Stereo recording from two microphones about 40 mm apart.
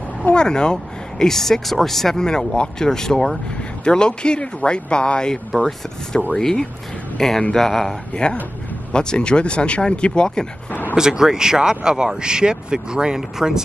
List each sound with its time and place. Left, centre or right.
0.3 s speech: left
1.2 s speech: centre
2.1 s a man's voice: centre
8.1 s speech: left
10.7 s speech: left
11.0 s speech: centre